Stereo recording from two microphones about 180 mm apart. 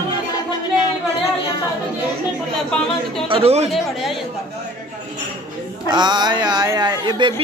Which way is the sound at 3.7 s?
Centre (ahead or behind).